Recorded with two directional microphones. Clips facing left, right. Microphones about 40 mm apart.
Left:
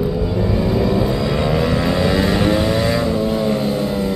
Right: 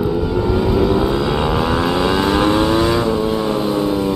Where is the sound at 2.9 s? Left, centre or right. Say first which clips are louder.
Right 1 dB; centre.